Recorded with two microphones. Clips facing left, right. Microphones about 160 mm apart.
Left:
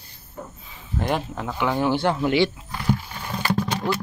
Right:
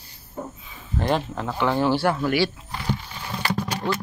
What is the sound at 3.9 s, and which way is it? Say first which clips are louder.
Speech: right 1 dB; 10° left (ahead or behind).